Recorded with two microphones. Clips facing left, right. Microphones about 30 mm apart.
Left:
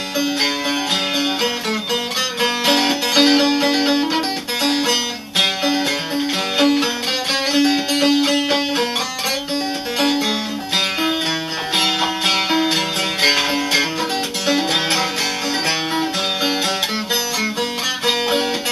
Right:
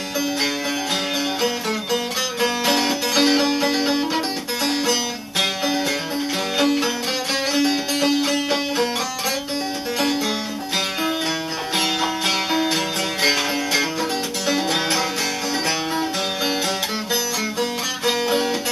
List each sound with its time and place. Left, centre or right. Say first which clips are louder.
2.4 s music: left 3 dB; left
9.9 s music: left 4 dB; left
11.7 s music: left 3 dB; left
17.6 s music: left 2 dB; left